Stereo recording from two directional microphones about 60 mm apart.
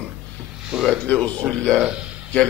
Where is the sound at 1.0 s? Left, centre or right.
Left.